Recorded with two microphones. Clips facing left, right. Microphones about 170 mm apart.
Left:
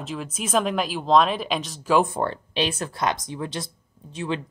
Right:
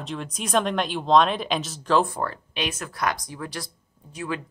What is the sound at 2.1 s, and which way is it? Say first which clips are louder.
Speech: left 4 dB; 30° left (ahead or behind).